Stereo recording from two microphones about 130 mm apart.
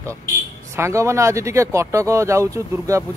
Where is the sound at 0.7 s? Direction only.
20° right (ahead or behind).